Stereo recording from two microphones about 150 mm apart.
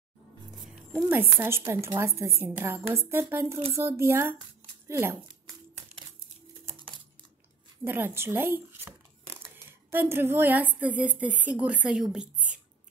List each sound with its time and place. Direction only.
1.1 s a woman's voice: 15° right (ahead or behind)
7.8 s a woman's voice: 15° right (ahead or behind)